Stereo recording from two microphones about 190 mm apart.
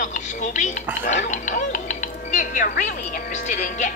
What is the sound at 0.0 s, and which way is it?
Speech, 40° left (ahead or behind).